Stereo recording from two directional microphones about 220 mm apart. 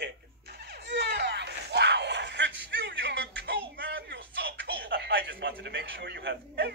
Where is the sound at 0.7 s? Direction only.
50° right (ahead or behind).